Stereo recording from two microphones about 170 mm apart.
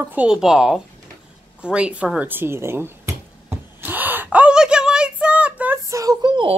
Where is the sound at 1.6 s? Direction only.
5° right (ahead or behind).